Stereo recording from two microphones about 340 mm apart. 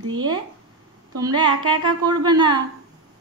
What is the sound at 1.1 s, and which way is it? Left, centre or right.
A woman's voice, centre.